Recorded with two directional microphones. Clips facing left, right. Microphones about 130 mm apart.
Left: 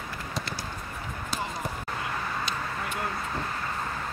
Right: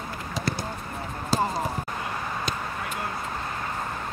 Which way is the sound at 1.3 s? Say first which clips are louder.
Right 9 dB; 35° right (ahead or behind).